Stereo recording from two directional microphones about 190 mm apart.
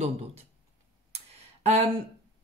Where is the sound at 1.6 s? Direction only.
35° right (ahead or behind).